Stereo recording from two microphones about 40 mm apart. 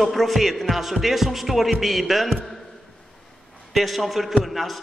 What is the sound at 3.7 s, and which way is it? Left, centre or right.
A man's voice, centre.